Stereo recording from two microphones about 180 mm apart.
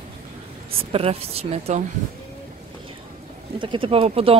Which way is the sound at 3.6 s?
30° right (ahead or behind).